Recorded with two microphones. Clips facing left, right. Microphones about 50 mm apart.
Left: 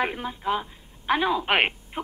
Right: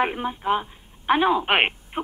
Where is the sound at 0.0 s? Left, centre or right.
Centre.